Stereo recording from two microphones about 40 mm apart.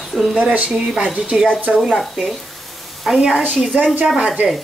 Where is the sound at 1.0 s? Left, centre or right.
Right.